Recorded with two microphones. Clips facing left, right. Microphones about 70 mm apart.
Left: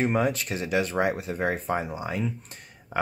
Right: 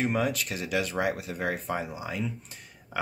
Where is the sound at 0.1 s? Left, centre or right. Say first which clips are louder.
Left 3 dB; left.